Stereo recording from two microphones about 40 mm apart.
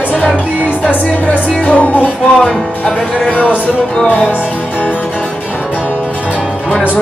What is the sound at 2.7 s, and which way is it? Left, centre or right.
Music, left.